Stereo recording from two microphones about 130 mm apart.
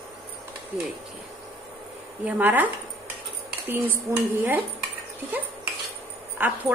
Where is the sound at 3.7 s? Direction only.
15° right (ahead or behind).